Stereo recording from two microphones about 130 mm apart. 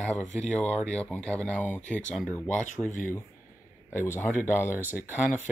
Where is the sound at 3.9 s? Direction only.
20° left (ahead or behind).